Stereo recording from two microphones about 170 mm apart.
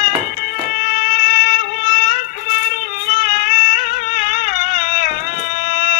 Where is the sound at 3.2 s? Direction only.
60° left (ahead or behind).